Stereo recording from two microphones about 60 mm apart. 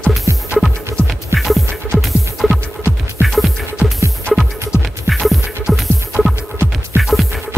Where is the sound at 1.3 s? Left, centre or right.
Right.